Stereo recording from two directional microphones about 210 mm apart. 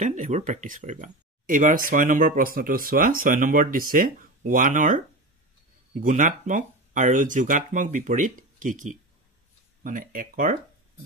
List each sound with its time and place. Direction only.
0.0 s speech: 35° right (ahead or behind)